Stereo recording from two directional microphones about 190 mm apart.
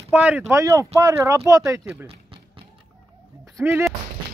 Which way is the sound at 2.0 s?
30° right (ahead or behind).